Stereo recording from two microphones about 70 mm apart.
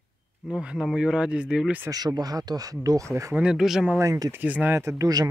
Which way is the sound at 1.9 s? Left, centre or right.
Right.